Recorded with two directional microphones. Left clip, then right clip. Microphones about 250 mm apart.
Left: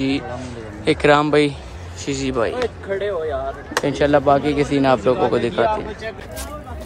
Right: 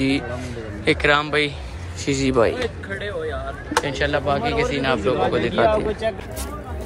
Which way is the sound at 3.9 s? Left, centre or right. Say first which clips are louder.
Left 10 dB; left.